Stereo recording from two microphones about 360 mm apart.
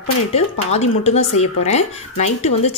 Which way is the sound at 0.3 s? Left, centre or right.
Centre.